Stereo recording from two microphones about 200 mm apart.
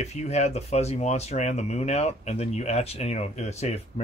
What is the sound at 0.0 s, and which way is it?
Speech, 35° left (ahead or behind).